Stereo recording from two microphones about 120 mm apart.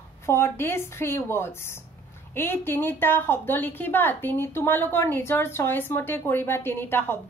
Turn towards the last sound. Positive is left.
turn(degrees=20)  # may be behind; listen again after turning